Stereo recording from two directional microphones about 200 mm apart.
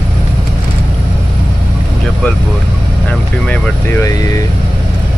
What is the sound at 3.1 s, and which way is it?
Speech, 5° left (ahead or behind).